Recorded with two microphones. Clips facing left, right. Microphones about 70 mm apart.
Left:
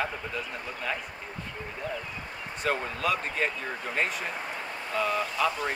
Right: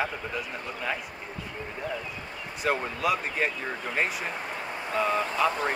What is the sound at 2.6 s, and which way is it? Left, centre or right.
Speech, centre.